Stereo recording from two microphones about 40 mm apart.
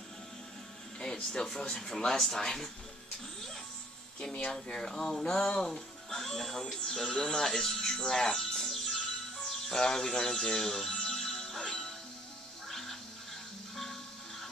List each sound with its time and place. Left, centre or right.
1.3 s speech: centre
4.5 s speech: centre
8.3 s music: centre